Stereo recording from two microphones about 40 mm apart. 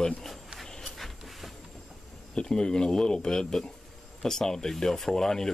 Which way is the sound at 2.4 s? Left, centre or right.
Centre.